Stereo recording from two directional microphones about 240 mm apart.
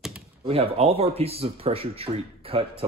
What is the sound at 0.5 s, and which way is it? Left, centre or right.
Speech, right.